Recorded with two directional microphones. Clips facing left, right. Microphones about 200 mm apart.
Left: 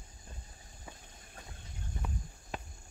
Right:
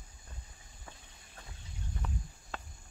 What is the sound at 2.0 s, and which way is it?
Walk, 15° left (ahead or behind).